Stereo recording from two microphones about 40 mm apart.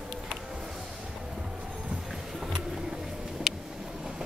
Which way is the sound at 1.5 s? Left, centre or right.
Right.